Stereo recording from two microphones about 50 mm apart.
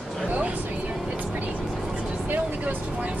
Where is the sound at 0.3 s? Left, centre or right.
Right.